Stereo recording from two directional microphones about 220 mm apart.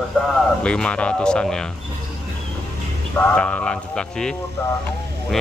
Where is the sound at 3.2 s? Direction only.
5° left (ahead or behind).